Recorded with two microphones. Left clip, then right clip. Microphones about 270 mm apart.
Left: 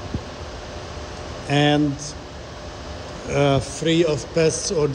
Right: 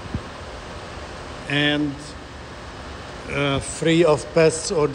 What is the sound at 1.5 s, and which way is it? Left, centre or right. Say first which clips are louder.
Speech: left 2 dB; centre.